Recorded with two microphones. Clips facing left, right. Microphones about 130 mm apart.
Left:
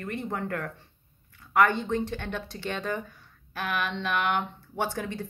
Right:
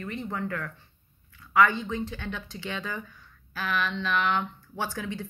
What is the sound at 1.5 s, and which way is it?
Speech, 60° left (ahead or behind).